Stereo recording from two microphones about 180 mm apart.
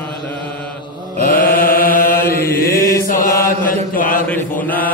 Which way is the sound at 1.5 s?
50° left (ahead or behind).